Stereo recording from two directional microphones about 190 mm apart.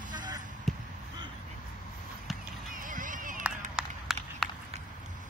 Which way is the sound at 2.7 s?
45° right (ahead or behind).